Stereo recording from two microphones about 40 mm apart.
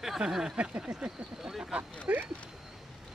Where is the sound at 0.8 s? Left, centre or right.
Right.